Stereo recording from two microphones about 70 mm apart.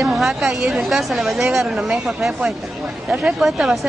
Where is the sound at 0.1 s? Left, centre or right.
Centre.